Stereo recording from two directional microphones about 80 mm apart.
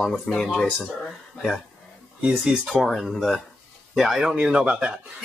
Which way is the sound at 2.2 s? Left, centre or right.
Centre.